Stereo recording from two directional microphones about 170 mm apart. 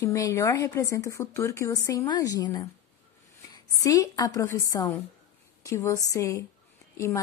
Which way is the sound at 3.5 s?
25° left (ahead or behind).